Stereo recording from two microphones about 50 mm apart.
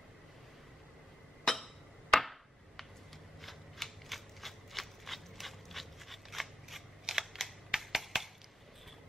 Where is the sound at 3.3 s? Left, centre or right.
Centre.